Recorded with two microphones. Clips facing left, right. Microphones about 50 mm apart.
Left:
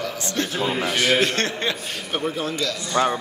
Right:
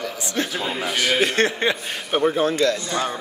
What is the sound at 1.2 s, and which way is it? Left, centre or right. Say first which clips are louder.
A man's voice: right 3 dB; centre.